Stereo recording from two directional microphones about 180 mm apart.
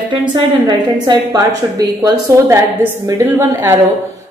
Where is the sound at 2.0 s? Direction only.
15° right (ahead or behind).